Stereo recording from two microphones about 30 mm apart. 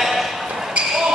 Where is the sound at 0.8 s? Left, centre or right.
Right.